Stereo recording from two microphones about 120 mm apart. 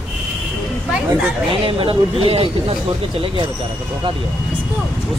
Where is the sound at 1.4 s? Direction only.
50° right (ahead or behind).